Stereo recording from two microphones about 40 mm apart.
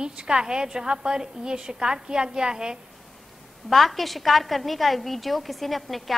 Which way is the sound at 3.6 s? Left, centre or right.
Centre.